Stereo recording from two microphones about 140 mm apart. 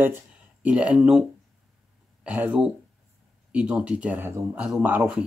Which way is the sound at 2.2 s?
10° right (ahead or behind).